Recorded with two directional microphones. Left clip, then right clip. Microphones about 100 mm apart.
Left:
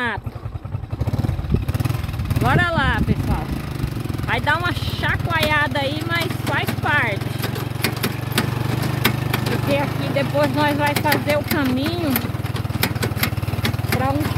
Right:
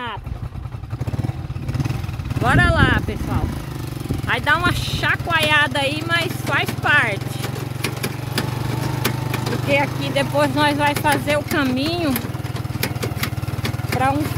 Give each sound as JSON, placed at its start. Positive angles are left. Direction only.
{"t": 2.4, "sound": "speech", "side_deg": -25}
{"t": 4.3, "sound": "speech", "side_deg": -25}
{"t": 4.6, "sound": "speech", "side_deg": -40}
{"t": 7.8, "sound": "engine", "side_deg": 55}
{"t": 9.7, "sound": "speech", "side_deg": -50}
{"t": 12.8, "sound": "vehicle", "side_deg": 55}